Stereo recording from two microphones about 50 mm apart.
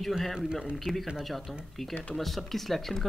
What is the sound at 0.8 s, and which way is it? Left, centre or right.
Speech, centre.